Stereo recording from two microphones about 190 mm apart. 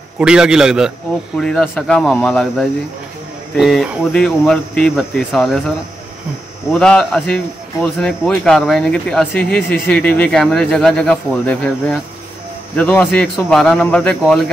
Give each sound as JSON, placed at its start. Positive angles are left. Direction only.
{"t": 0.2, "sound": "a man's voice", "side_deg": -5}
{"t": 6.7, "sound": "a man's voice", "side_deg": 5}
{"t": 9.4, "sound": "speech", "side_deg": 55}
{"t": 9.8, "sound": "a man's voice", "side_deg": 10}